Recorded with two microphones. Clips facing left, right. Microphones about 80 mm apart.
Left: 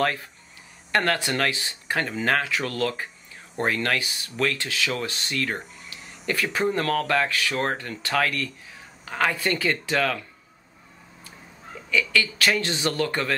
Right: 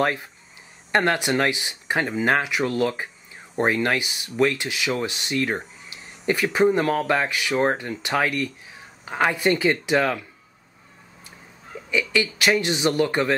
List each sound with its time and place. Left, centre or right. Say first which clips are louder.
0.0 s speech: right 2 dB; centre
11.9 s speech: right 1 dB; centre